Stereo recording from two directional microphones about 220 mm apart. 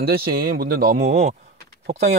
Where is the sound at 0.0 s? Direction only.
45° right (ahead or behind).